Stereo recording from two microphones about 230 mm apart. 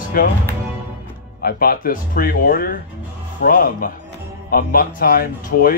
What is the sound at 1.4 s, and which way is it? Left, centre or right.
Speech, left.